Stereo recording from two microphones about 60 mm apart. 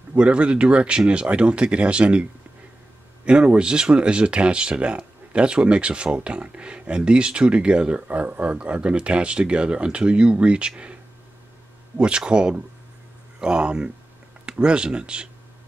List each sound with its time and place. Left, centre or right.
0.1 s speech: centre
3.3 s speech: centre
12.0 s speech: centre